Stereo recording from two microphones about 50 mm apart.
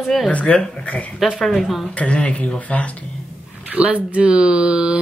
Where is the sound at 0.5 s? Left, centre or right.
Centre.